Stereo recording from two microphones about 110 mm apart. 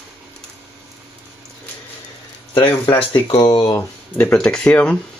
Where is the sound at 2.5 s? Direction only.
50° left (ahead or behind).